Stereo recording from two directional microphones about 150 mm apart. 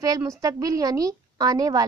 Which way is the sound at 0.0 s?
25° right (ahead or behind).